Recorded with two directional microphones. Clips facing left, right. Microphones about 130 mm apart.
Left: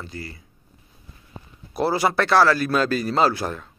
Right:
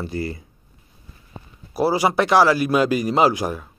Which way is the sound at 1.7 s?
10° right (ahead or behind).